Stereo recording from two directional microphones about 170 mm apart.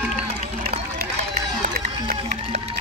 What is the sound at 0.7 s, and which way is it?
Run, 55° right (ahead or behind).